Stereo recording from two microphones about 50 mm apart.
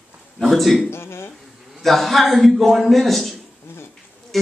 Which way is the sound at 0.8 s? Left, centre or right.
Left.